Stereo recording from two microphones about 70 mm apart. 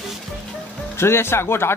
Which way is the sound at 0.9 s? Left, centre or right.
Left.